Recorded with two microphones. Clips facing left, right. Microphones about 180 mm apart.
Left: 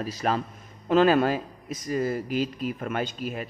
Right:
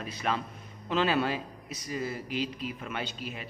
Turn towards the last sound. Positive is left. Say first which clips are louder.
# left 7 dB
turn(degrees=45)  # may be behind; listen again after turning